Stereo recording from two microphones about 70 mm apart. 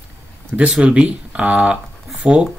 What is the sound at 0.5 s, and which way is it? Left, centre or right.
Speech, centre.